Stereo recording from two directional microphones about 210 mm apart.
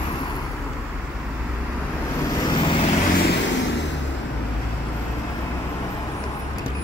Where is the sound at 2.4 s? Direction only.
20° left (ahead or behind).